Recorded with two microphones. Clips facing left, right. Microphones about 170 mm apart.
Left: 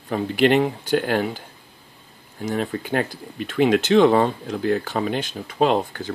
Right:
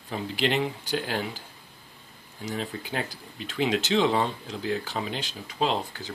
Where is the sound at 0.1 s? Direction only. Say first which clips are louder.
Left 9 dB; 55° left (ahead or behind).